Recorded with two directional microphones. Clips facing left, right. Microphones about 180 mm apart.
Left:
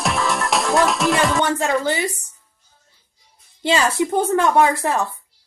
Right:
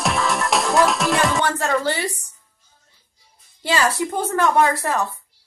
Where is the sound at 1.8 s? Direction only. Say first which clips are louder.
Left 2 dB; 15° left (ahead or behind).